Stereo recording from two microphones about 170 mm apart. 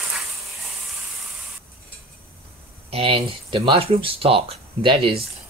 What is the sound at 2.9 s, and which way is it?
Speech, 35° right (ahead or behind).